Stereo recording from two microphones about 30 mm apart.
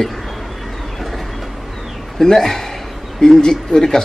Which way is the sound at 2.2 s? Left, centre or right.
Centre.